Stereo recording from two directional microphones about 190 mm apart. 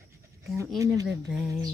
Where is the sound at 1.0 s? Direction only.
65° right (ahead or behind).